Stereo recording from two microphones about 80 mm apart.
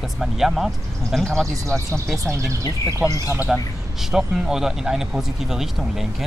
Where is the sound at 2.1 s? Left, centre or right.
Right.